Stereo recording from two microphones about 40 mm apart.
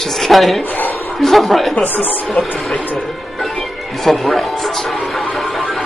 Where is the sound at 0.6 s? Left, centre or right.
Left.